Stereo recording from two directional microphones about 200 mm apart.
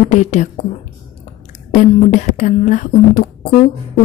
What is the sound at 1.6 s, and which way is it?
Speech, 35° left (ahead or behind).